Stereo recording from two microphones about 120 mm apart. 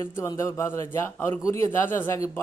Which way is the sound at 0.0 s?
25° left (ahead or behind).